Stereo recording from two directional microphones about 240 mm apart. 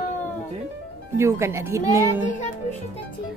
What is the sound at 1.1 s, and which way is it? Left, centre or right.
Speech, centre.